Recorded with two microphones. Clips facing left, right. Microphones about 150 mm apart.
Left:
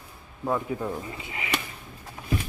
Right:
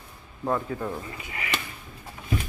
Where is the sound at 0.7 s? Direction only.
15° left (ahead or behind).